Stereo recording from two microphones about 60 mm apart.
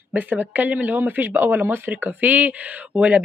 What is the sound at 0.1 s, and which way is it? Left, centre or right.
Speech, right.